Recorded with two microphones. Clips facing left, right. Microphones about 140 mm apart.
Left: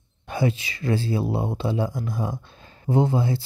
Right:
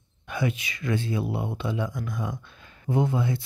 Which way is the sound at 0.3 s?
30° left (ahead or behind).